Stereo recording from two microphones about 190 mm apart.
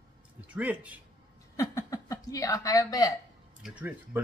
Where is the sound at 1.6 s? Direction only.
15° left (ahead or behind).